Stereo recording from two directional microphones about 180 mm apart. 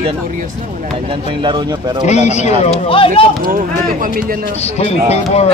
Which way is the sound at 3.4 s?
50° right (ahead or behind).